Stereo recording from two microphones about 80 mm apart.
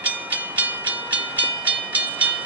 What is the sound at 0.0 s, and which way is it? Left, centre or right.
Train, centre.